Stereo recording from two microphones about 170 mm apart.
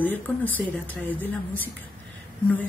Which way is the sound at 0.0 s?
10° left (ahead or behind).